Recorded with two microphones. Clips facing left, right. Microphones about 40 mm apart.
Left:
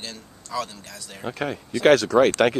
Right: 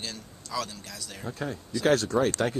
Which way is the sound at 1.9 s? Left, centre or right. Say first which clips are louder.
Left 8 dB; left.